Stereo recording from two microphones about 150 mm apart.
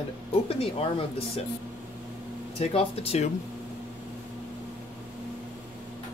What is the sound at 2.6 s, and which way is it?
Speech, 40° left (ahead or behind).